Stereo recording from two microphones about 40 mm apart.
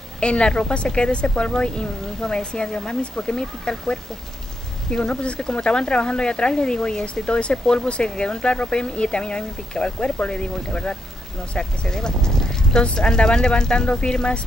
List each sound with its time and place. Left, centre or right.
0.2 s speech: left